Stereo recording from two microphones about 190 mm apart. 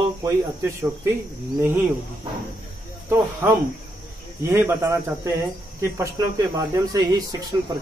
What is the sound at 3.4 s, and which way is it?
Speech, 10° right (ahead or behind).